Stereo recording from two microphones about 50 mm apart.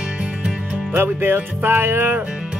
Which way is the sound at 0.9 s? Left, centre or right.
Right.